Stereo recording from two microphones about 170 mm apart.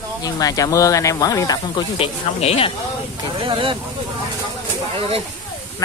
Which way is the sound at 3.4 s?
30° right (ahead or behind).